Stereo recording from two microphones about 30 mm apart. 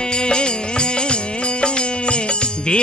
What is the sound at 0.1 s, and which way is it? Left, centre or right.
Music, left.